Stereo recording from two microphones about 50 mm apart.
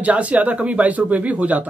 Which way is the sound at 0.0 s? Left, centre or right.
Right.